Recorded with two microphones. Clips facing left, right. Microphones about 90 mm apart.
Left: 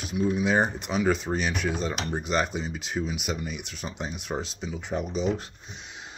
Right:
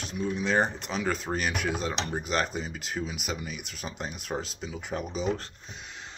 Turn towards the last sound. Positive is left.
turn(degrees=0)  # may be behind; listen again after turning